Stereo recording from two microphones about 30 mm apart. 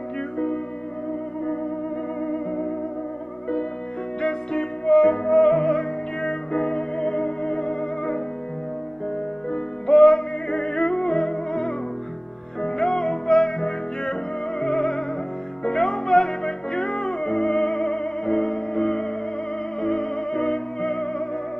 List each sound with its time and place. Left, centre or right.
2.2 s music: left
4.2 s music: left
9.5 s music: left